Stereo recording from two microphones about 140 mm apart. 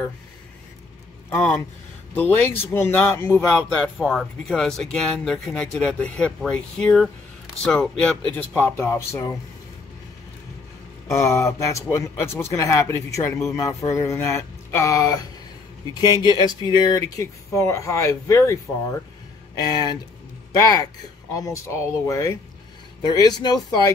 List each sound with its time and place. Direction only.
1.3 s speech: 10° left (ahead or behind)
2.6 s speech: 15° left (ahead or behind)
3.5 s speech: centre (ahead or behind)
8.5 s speech: 15° left (ahead or behind)
11.1 s speech: 20° left (ahead or behind)
16.7 s speech: 30° left (ahead or behind)